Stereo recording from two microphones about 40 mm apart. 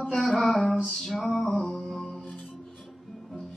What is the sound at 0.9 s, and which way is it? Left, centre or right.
Music, centre.